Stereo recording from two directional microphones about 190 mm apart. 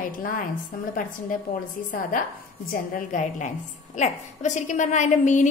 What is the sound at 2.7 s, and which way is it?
A woman's voice, 45° left (ahead or behind).